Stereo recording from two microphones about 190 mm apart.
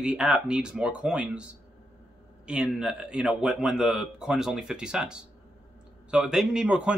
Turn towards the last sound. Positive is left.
turn(degrees=-5)  # may be behind; listen again after turning